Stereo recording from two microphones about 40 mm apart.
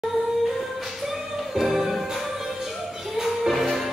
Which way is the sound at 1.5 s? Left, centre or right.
Centre.